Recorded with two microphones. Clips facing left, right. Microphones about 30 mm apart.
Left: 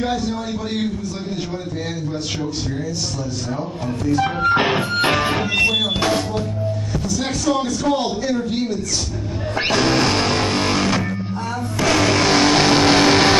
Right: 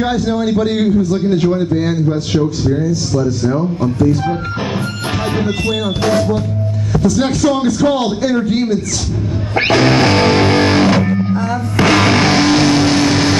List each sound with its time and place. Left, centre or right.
0.0 s a man's voice: right
4.2 s speech: left
7.0 s music: right
7.6 s speech: right
8.4 s a man's voice: right
9.6 s speech: right
11.8 s music: right
12.3 s vehicle: centre
12.5 s vehicle: centre